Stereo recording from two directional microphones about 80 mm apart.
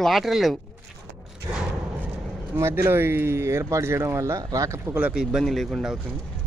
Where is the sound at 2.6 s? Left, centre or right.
Right.